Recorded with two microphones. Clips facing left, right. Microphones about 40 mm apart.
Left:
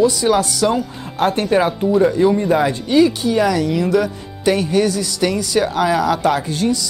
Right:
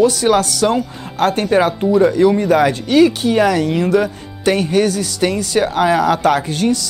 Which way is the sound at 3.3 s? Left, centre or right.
Right.